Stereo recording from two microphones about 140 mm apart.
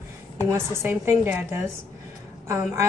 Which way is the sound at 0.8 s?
15° right (ahead or behind).